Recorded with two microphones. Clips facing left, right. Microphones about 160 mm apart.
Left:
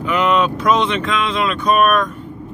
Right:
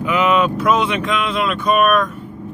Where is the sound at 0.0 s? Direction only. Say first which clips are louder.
Even; 5° right (ahead or behind).